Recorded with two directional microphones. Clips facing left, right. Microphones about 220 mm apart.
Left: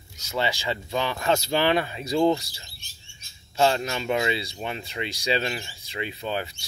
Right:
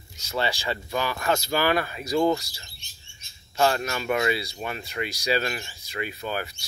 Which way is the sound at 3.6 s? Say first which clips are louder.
Left 1 dB; 25° left (ahead or behind).